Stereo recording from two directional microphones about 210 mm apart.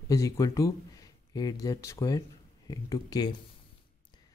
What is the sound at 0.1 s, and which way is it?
Speech, 15° left (ahead or behind).